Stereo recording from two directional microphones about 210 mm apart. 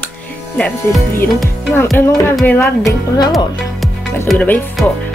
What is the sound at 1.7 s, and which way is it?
Speech, 10° left (ahead or behind).